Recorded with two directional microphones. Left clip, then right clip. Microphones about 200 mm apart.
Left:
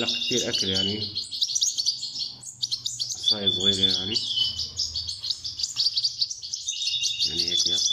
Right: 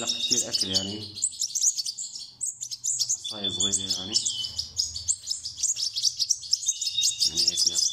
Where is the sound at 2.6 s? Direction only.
55° right (ahead or behind).